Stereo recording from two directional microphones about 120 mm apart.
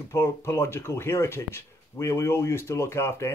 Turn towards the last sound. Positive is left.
turn(degrees=20)  # may be behind; listen again after turning